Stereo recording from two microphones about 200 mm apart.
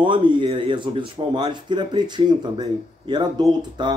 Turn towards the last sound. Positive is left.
turn(degrees=-25)  # may be behind; listen again after turning